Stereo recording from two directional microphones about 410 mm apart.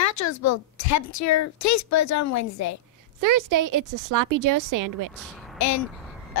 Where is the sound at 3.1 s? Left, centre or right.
Right.